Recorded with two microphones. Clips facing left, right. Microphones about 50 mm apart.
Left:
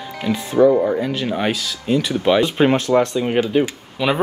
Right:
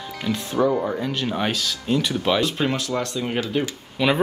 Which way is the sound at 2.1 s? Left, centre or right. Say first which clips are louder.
Left 5 dB; centre.